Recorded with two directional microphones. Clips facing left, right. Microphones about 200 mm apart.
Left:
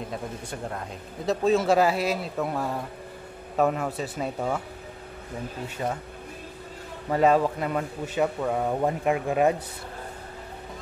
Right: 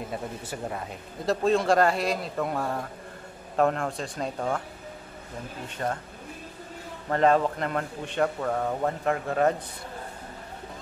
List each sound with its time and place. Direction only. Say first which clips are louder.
0.1 s speech: even; 5° right (ahead or behind)
5.8 s a man's voice: even; 10° left (ahead or behind)
7.1 s a man's voice: left 1 dB; 10° left (ahead or behind)